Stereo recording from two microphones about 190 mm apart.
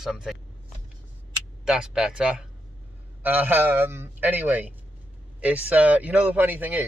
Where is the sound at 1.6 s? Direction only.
5° right (ahead or behind).